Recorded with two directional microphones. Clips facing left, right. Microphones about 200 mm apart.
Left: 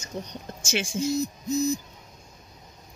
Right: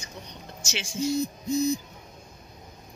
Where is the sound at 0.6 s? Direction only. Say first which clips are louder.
Left 7 dB; 50° left (ahead or behind).